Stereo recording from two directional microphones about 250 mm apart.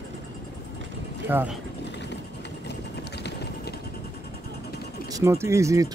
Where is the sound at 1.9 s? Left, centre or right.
Left.